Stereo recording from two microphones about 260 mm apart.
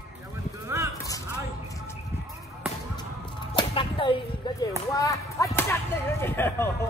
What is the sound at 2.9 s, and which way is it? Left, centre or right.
Music, centre.